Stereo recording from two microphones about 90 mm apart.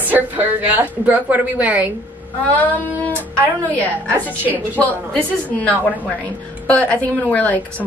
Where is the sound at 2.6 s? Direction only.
20° left (ahead or behind).